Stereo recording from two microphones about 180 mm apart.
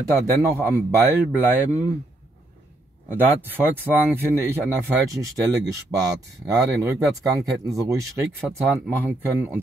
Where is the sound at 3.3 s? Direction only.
10° right (ahead or behind).